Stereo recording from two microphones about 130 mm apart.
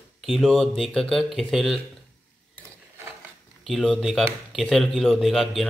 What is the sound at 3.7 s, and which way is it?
Speech, centre (ahead or behind).